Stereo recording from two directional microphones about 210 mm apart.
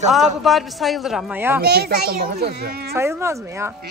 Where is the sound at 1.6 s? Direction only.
50° right (ahead or behind).